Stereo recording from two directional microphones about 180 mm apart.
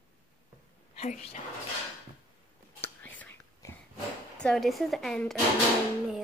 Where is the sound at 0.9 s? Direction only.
40° left (ahead or behind).